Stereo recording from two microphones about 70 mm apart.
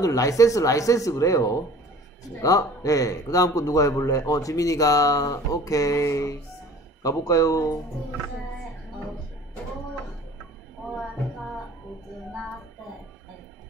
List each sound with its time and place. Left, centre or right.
0.0 s speech: left